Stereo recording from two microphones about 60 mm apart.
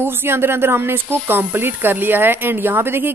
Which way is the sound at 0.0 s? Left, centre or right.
Right.